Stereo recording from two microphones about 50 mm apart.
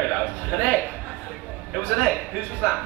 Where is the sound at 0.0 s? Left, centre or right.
Centre.